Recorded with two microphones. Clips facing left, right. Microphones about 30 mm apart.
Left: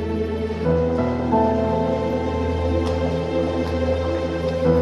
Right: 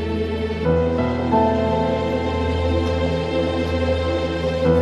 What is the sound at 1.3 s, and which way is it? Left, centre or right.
Music, right.